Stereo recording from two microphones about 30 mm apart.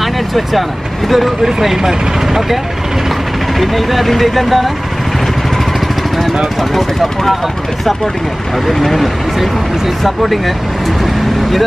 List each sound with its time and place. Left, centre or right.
0.0 s speech: centre
3.5 s speech: centre
6.7 s speech: centre
8.6 s speech: centre